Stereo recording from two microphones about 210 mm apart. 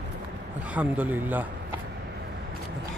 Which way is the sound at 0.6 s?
5° right (ahead or behind).